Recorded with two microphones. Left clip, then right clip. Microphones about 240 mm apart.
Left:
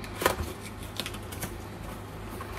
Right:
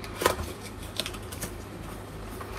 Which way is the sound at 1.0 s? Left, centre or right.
Centre.